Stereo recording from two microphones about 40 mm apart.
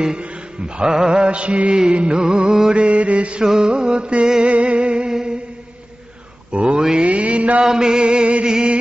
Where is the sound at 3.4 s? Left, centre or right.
Centre.